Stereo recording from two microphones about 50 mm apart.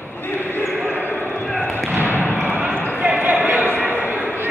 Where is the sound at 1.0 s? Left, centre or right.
Left.